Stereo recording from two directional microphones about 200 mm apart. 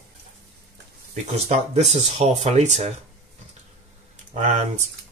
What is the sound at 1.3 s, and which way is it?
Speech, 30° right (ahead or behind).